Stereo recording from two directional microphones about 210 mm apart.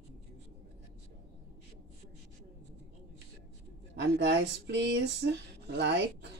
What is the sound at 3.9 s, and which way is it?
Speech, 55° right (ahead or behind).